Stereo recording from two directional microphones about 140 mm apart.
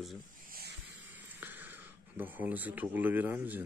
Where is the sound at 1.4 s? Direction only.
15° right (ahead or behind).